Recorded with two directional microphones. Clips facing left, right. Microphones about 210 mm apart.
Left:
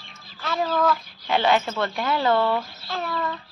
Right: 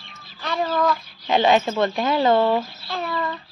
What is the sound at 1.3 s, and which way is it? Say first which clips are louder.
Speech: right 3 dB; 20° right (ahead or behind).